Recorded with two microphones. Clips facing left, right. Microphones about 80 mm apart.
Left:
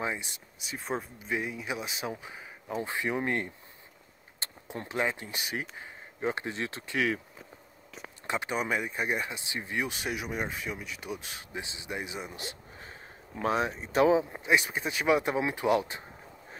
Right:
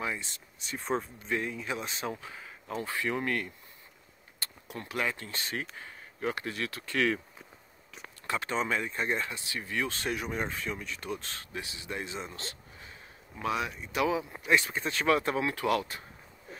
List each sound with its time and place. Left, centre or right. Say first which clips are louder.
0.0 s speech: left 2 dB; centre
0.6 s speech: right 2 dB; centre; by 7.0 s left
8.3 s speech: even; centre
13.4 s speech: left 3 dB; left